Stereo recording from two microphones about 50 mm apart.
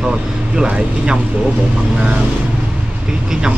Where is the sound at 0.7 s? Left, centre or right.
Centre.